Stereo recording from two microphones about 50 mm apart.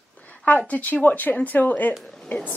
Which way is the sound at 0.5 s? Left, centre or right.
Left.